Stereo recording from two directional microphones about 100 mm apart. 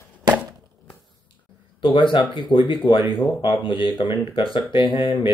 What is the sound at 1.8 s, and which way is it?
Speech, 55° left (ahead or behind).